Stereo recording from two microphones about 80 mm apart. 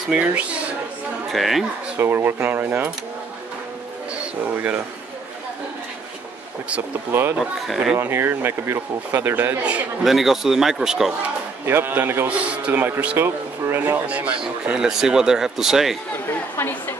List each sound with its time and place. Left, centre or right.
0.1 s speech: centre
1.3 s a man's voice: centre
2.0 s speech: right
4.5 s speech: right
7.1 s speech: right
7.3 s a man's voice: centre
8.0 s speech: right
9.6 s speech: centre
10.0 s a man's voice: centre
11.6 s speech: right
14.0 s speech: centre
16.5 s a woman's voice: left